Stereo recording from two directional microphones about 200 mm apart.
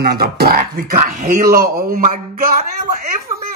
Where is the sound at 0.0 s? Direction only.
50° right (ahead or behind).